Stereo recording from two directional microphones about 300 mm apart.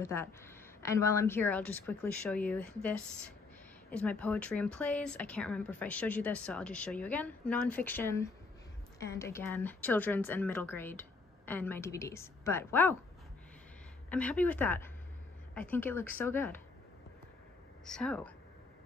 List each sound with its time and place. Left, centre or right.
0.0 s a woman's voice: centre
14.1 s a woman's voice: centre
17.8 s speech: centre